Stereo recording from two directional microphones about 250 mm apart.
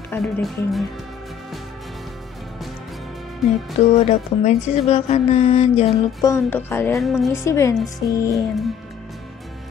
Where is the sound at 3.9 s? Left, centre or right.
Left; by 7.1 s centre.